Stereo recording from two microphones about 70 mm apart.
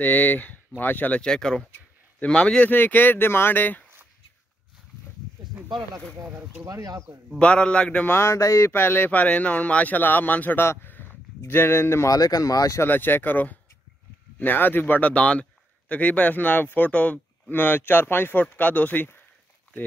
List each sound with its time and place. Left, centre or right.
0.0 s speech: left
1.2 s a man's voice: centre
2.7 s speech: left
6.6 s speech: right
7.3 s a man's voice: centre
8.1 s speech: left
8.7 s speech: left
12.1 s speech: left
12.8 s speech: left